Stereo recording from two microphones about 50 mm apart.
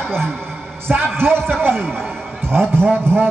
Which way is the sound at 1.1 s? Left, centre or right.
Right.